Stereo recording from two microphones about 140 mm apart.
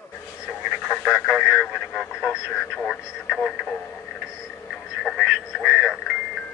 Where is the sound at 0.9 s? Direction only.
5° right (ahead or behind).